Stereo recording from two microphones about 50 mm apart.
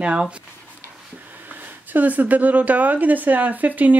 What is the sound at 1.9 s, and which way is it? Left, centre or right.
A woman's voice, right.